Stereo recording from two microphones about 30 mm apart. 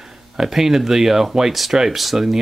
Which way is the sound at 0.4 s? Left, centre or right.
Centre.